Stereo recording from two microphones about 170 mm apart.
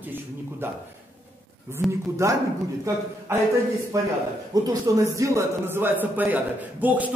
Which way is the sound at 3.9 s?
20° right (ahead or behind).